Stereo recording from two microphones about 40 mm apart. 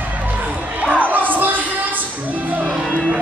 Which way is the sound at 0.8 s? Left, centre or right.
Right.